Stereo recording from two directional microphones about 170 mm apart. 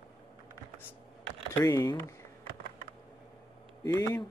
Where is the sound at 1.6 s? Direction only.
20° left (ahead or behind).